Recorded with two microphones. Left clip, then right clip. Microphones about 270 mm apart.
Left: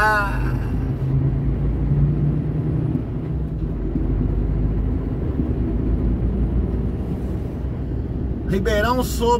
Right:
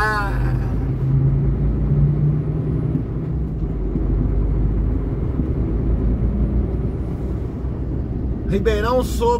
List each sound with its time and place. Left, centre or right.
0.0 s vehicle: centre
8.7 s speech: centre